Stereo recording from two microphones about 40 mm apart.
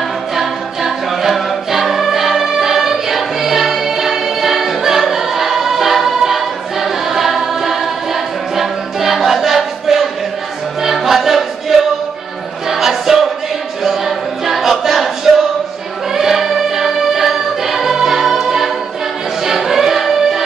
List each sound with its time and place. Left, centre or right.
0.4 s choir: centre
9.6 s a sound: centre
10.8 s music: centre